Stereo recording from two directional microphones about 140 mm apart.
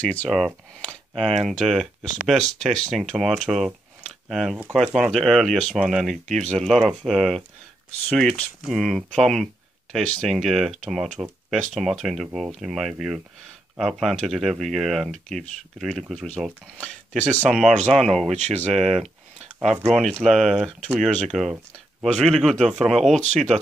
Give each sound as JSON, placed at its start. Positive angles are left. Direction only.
{"t": 0.0, "sound": "speech", "side_deg": 10}
{"t": 18.3, "sound": "speech", "side_deg": -55}
{"t": 19.9, "sound": "speech", "side_deg": 5}